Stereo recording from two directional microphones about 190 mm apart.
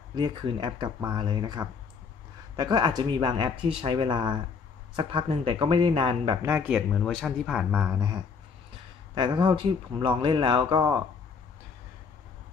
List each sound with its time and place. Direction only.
0.1 s speech: 25° right (ahead or behind)
6.4 s speech: 10° right (ahead or behind)
6.9 s speech: 5° left (ahead or behind); by 11.0 s 25° right (ahead or behind)